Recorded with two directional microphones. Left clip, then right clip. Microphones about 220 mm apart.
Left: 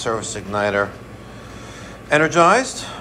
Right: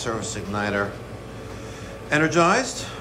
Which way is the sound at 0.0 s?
5° right (ahead or behind).